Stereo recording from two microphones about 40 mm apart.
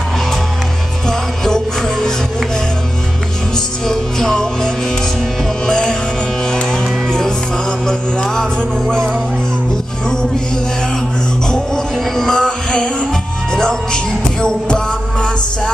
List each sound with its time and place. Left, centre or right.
1.0 s music: centre
3.5 s music: centre
7.1 s music: centre
11.4 s music: centre